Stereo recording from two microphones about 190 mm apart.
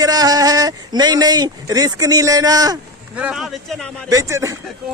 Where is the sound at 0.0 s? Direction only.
20° right (ahead or behind).